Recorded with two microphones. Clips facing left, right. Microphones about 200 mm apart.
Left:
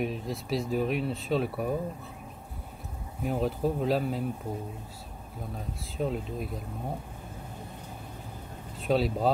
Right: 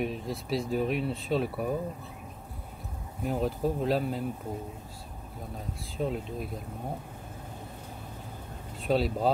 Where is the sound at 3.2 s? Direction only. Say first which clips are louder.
Left 1 dB; centre (ahead or behind).